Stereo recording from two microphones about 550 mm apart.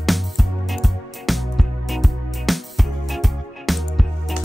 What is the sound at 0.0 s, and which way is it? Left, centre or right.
Music, centre.